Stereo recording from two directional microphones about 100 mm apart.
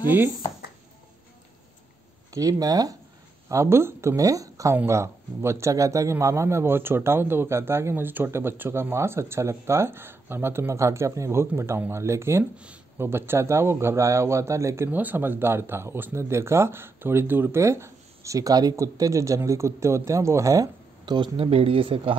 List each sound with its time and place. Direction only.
0.0 s a man's voice: 20° right (ahead or behind)
2.3 s speech: 35° right (ahead or behind)
3.4 s a man's voice: 25° right (ahead or behind)
14.9 s a man's voice: 15° right (ahead or behind); by 21.3 s 45° right (ahead or behind)
21.4 s speech: 70° right (ahead or behind)